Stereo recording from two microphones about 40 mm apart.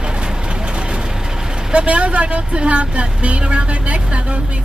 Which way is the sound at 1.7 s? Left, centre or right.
Right.